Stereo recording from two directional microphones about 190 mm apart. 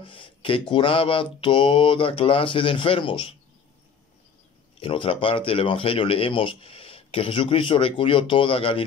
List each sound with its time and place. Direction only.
0.0 s speech: 25° left (ahead or behind)
4.7 s speech: 25° left (ahead or behind)